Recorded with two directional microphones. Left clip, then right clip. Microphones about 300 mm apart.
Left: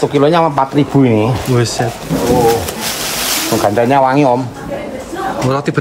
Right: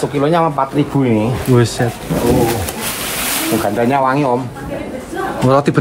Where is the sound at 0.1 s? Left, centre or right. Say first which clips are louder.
Left 2 dB; left.